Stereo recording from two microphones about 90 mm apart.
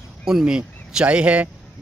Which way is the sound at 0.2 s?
5° right (ahead or behind).